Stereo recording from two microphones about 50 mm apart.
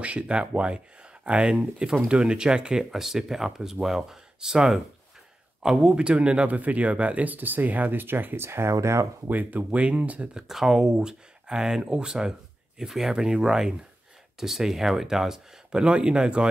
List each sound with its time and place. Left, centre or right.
0.0 s speech: right
8.5 s speech: right
9.3 s speech: right
10.3 s speech: centre